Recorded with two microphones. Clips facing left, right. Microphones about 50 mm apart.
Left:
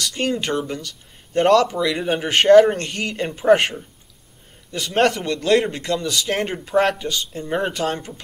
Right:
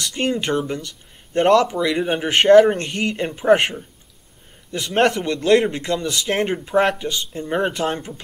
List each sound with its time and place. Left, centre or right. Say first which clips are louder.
0.2 s speech: right 2 dB; right
4.7 s speech: right 1 dB; centre
6.5 s speech: left 1 dB; centre